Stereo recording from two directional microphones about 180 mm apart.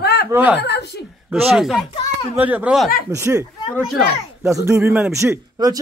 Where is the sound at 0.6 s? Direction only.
70° left (ahead or behind).